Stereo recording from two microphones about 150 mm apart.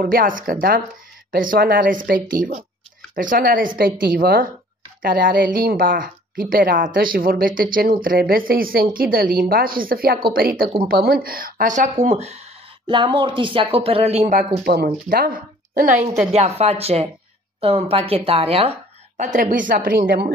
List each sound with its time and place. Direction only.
0.0 s speech: 70° right (ahead or behind)
10.9 s speech: 85° right; by 11.9 s 60° right (ahead or behind)
12.0 s speech: 50° right (ahead or behind)
14.6 s speech: 90° right; by 16.0 s 65° right (ahead or behind)
16.3 s speech: 45° right (ahead or behind)
19.1 s speech: 55° right (ahead or behind); by 20.2 s 80° right